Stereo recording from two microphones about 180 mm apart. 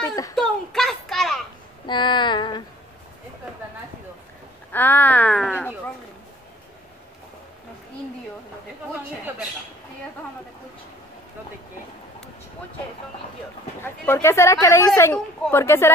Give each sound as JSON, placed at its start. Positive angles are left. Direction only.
{"t": 0.1, "sound": "speech", "side_deg": 20}
{"t": 0.4, "sound": "a sound", "side_deg": 0}
{"t": 1.9, "sound": "female singing", "side_deg": 25}
{"t": 4.7, "sound": "speech", "side_deg": 10}
{"t": 13.8, "sound": "speech", "side_deg": 15}
{"t": 15.1, "sound": "speech", "side_deg": 5}